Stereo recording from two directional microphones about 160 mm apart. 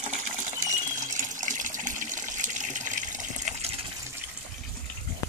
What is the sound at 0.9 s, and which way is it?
Water, 50° right (ahead or behind).